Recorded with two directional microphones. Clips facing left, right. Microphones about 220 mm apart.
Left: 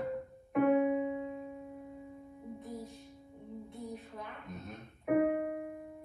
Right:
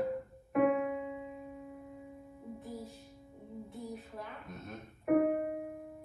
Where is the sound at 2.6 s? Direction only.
Centre (ahead or behind).